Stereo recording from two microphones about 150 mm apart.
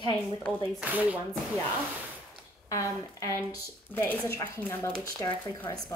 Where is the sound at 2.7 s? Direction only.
20° left (ahead or behind).